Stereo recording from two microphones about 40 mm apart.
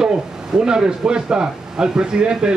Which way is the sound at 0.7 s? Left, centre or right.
Centre.